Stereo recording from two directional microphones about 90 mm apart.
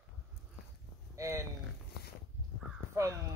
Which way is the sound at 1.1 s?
35° right (ahead or behind).